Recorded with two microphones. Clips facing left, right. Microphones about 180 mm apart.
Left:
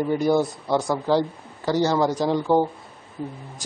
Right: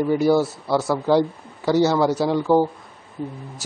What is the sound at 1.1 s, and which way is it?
A woman's voice, 10° right (ahead or behind).